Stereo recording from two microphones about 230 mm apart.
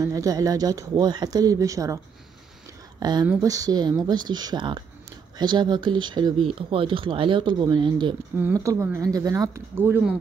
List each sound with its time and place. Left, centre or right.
0.0 s speech: centre
3.0 s speech: centre